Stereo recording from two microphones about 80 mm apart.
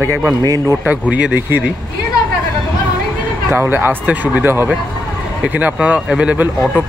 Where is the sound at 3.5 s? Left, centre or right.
Right; by 6.5 s centre.